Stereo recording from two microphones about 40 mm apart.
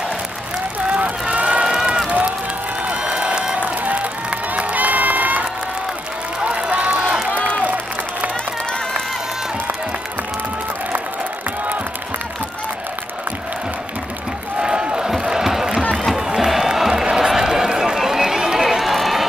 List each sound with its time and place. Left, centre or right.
0.8 s run: right
1.6 s run: centre
2.0 s run: right
2.9 s a sound: right
3.5 s crowd: right
4.7 s run: right
6.4 s run: right
7.6 s applause: right
14.6 s a sound: centre
16.2 s crowd: centre
17.4 s run: centre